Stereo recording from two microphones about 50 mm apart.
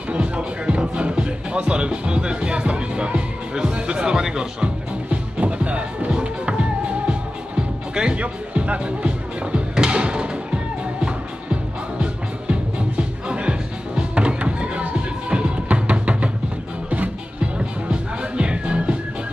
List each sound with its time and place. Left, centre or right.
0.1 s speech: right
5.1 s music: right
17.6 s music: centre